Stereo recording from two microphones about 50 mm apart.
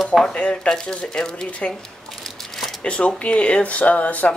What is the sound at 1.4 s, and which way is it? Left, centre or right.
Speech, left.